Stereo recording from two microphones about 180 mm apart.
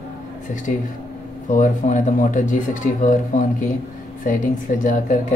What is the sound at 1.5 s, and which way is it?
Speech, 45° left (ahead or behind).